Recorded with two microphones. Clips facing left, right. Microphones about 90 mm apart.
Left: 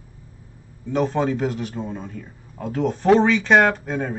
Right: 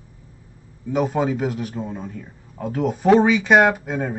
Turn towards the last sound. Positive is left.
turn(degrees=-5)  # may be behind; listen again after turning